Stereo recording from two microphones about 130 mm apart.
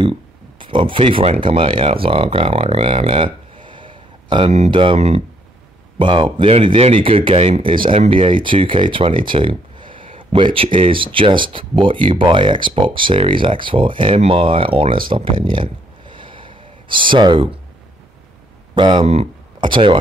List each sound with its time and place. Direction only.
0.6 s speech: 40° right (ahead or behind)
4.9 s speech: 55° right (ahead or behind)
5.9 s speech: 40° right (ahead or behind)
15.5 s a sound: 40° right (ahead or behind)
18.8 s speech: 35° right (ahead or behind)